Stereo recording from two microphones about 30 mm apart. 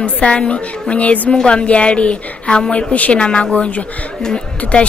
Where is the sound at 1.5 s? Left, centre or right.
Left.